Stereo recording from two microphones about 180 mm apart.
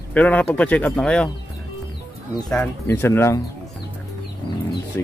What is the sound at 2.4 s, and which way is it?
Speech, 10° left (ahead or behind).